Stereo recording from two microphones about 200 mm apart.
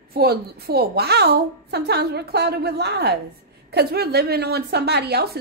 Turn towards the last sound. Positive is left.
turn(degrees=-55)  # may be behind; listen again after turning